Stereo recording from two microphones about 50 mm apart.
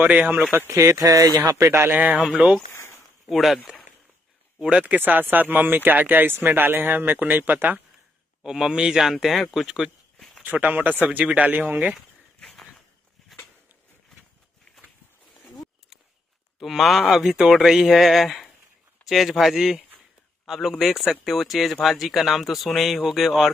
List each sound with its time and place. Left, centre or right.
0.0 s speech: right
0.3 s speech: right
0.7 s speech: right
2.4 s speech: centre
2.7 s a sound: left
3.3 s speech: centre
4.6 s speech: right
8.5 s speech: centre
10.1 s a sound: centre
10.4 s speech: right
12.4 s a sound: centre
16.5 s speech: centre